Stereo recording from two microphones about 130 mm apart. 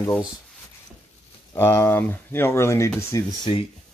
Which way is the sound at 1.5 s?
20° left (ahead or behind).